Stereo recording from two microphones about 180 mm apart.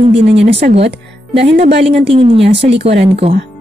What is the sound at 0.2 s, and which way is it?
Speech, 35° right (ahead or behind).